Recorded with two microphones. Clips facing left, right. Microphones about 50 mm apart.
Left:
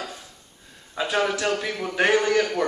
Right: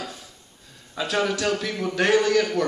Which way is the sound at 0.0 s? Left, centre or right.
Centre.